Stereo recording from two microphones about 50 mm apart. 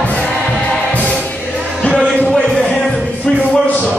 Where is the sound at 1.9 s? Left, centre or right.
Centre.